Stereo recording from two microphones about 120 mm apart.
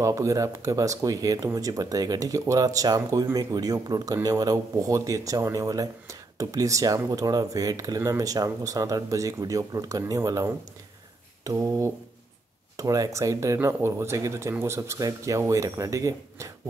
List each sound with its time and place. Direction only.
0.0 s speech: 25° right (ahead or behind)